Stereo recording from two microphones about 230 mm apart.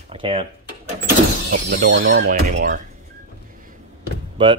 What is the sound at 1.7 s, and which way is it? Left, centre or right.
Speech, right.